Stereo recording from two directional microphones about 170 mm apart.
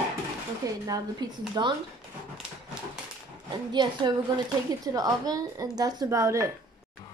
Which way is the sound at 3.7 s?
25° right (ahead or behind).